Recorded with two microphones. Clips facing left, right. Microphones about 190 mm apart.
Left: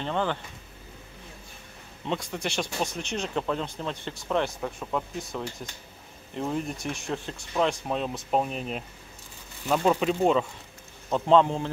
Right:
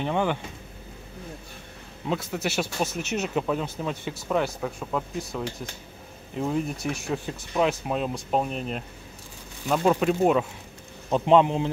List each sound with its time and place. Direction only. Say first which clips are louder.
0.0 s a man's voice: right 3 dB; 15° right (ahead or behind)
2.0 s speech: right 3 dB; 5° right (ahead or behind)
11.1 s a man's voice: right 2 dB; 15° right (ahead or behind)